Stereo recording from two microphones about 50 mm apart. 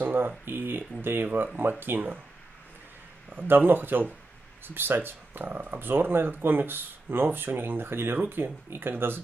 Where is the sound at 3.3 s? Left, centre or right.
Right.